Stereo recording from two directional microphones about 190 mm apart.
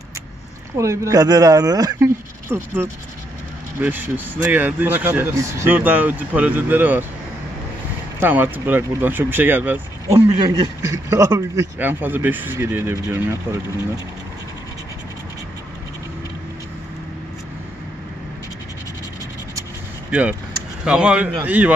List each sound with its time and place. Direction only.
0.7 s speech: 15° right (ahead or behind)
8.2 s speech: 10° right (ahead or behind)
20.1 s speech: 5° right (ahead or behind)